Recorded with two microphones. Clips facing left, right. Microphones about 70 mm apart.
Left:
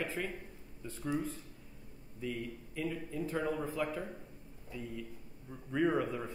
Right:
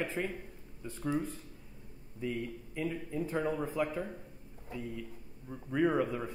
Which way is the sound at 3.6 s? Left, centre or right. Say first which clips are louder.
Right 2 dB; centre.